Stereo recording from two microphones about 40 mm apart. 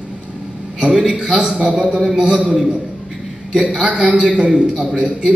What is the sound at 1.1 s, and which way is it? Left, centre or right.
A man's voice, centre.